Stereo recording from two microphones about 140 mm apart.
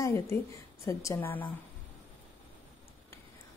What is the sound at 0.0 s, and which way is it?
A woman's voice, 20° left (ahead or behind).